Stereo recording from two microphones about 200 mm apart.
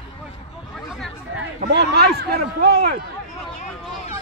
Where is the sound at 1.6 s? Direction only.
55° right (ahead or behind).